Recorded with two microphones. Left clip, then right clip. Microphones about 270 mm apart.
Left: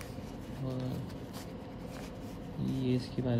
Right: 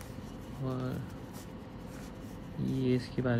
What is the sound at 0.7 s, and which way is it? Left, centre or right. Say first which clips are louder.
Speech: right 2 dB; centre.